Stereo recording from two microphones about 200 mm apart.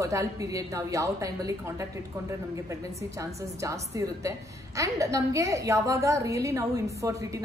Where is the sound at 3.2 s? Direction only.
15° right (ahead or behind).